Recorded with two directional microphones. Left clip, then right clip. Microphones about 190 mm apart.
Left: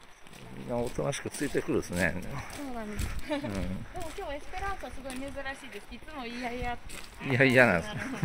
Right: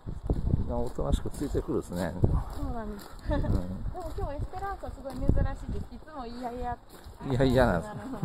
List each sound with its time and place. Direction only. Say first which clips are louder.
0.7 s speech: left 3 dB; 20° left (ahead or behind)
7.3 s speech: left 3 dB; 5° left (ahead or behind)